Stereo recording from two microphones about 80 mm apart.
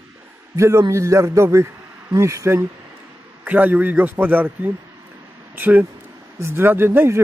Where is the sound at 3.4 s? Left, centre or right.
Right.